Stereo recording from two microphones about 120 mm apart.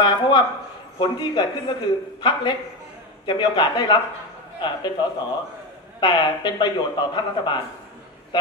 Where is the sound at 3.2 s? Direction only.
40° left (ahead or behind).